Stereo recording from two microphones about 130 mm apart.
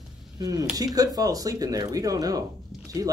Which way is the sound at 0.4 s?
30° right (ahead or behind).